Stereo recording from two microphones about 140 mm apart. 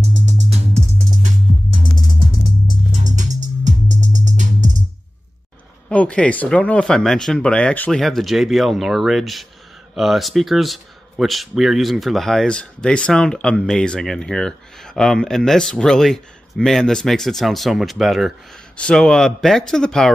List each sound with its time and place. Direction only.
3.0 s music: 60° right (ahead or behind)
5.9 s speech: 10° left (ahead or behind)